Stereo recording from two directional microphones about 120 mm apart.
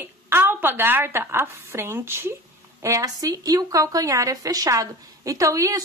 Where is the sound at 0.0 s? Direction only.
20° right (ahead or behind).